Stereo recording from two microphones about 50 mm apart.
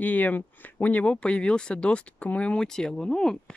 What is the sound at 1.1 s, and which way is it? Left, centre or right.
Speech, left.